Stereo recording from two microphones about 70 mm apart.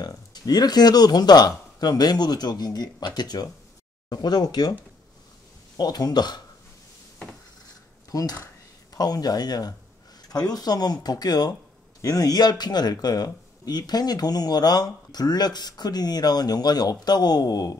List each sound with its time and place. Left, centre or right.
0.0 s speech: left
4.1 s speech: left
5.8 s speech: left
8.1 s speech: left